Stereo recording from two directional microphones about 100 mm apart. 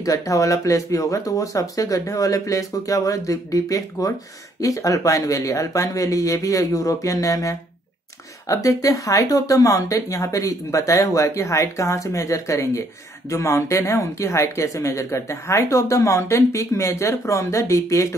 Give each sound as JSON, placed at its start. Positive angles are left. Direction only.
{"t": 0.0, "sound": "speech", "side_deg": 35}